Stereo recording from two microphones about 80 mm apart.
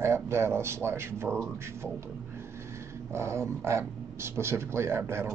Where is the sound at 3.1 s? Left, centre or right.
Right.